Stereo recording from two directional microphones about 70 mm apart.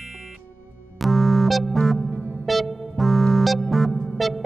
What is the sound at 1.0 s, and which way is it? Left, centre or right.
Music, centre.